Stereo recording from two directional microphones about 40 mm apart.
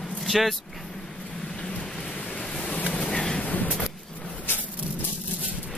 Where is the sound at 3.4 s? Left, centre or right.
Left.